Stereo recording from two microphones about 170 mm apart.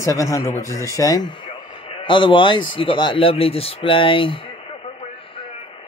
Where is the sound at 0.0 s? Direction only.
15° left (ahead or behind).